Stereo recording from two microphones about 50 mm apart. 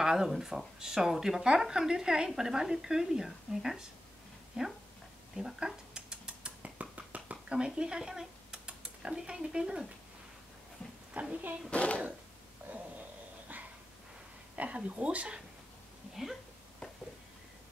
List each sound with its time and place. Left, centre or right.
0.0 s speech: centre
5.3 s cutlery: centre
6.6 s a sound: right
11.2 s a woman's voice: right
11.7 s speech: left
12.6 s a sound: right
14.5 s a woman's voice: right